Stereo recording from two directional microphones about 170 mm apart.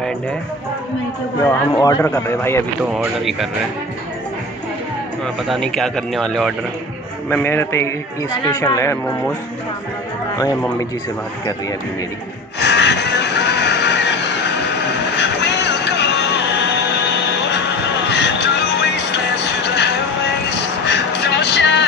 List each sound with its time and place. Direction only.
1.4 s a man's voice: 20° left (ahead or behind)
2.8 s speech: 5° right (ahead or behind)
5.2 s a man's voice: centre (ahead or behind)
12.5 s music: 90° left
15.4 s music: 90° left
20.4 s vehicle: 90° left